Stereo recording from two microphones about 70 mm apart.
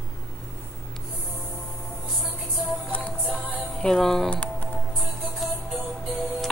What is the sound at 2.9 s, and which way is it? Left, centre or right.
Music, left.